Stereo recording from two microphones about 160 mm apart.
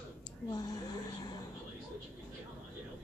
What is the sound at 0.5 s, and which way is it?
Speech, 25° left (ahead or behind).